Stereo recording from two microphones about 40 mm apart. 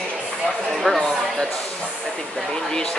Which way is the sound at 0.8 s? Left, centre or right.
Centre.